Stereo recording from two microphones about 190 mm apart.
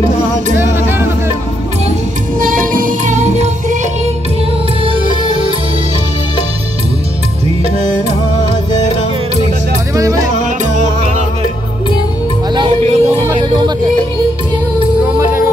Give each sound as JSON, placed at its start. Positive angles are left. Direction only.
{"t": 0.6, "sound": "music", "side_deg": -10}
{"t": 2.4, "sound": "music", "side_deg": -45}
{"t": 4.8, "sound": "music", "side_deg": -25}
{"t": 9.9, "sound": "music", "side_deg": -15}
{"t": 12.5, "sound": "a sound", "side_deg": -30}
{"t": 15.1, "sound": "music", "side_deg": -10}